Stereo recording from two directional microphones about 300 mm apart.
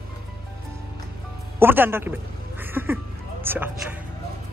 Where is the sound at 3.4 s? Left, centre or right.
Centre.